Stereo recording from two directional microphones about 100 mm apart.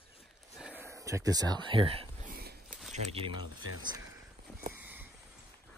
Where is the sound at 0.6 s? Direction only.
15° right (ahead or behind).